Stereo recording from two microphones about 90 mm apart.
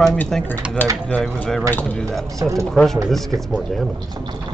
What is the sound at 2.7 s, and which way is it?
Speech, 5° left (ahead or behind).